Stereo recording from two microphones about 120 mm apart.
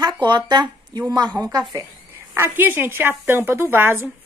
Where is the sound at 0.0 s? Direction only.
40° right (ahead or behind).